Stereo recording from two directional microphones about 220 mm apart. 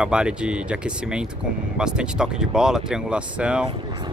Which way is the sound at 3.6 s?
20° right (ahead or behind).